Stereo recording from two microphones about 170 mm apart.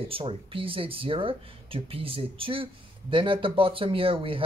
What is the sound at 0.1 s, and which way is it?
Speech, 30° right (ahead or behind).